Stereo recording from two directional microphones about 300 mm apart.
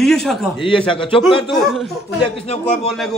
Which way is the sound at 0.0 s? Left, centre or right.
Centre.